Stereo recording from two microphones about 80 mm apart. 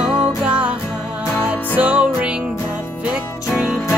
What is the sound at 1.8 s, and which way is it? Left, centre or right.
Music, centre.